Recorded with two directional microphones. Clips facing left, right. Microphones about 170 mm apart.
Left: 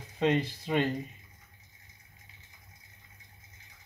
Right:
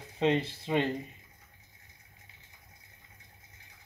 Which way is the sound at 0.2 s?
20° right (ahead or behind).